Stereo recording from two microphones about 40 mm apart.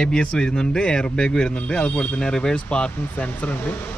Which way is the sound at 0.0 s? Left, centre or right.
Centre.